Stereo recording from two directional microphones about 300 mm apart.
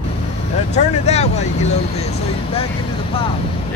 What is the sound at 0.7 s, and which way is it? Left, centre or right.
Speech, left.